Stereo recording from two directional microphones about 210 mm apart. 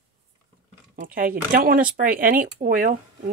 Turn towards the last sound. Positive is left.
turn(degrees=-40)  # may be behind; listen again after turning